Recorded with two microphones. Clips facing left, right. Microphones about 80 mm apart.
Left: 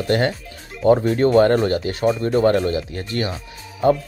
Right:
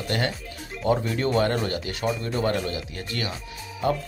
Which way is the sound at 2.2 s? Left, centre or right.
Left.